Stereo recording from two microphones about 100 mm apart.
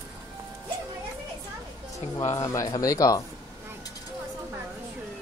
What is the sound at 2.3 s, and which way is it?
Speech, 35° left (ahead or behind).